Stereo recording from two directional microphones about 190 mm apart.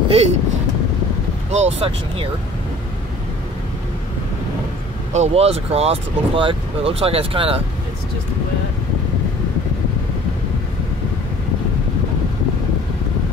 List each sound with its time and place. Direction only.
0.1 s speech: 35° right (ahead or behind)
1.5 s speech: 30° right (ahead or behind)
5.1 s speech: 35° right (ahead or behind)